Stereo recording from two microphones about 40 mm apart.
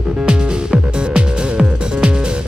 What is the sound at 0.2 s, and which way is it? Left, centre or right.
Music, centre.